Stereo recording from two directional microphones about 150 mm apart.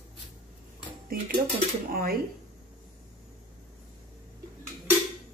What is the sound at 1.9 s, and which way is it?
Speech, 90° right.